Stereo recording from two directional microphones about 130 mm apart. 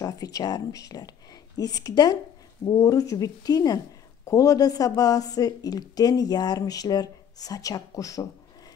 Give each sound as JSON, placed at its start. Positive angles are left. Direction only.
{"t": 0.0, "sound": "a woman's voice", "side_deg": 25}